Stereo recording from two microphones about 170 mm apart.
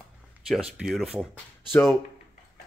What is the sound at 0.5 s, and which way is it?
Speech, 5° right (ahead or behind).